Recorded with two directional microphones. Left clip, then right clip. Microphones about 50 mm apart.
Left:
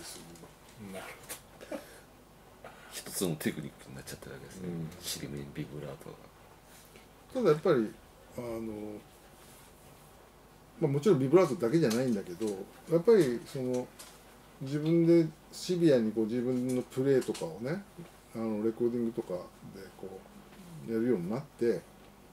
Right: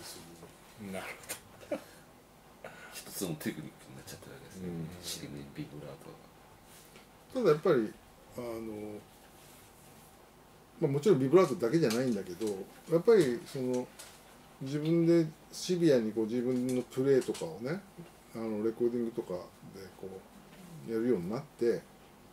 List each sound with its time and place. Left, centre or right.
0.9 s speech: right
2.9 s a sound: left
7.3 s speech: centre
10.8 s speech: centre
12.1 s speech: centre
12.9 s speech: centre
13.6 s speech: right
14.6 s speech: centre
20.9 s speech: centre